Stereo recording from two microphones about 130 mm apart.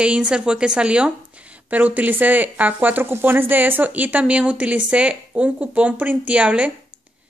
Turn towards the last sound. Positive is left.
turn(degrees=-10)  # may be behind; listen again after turning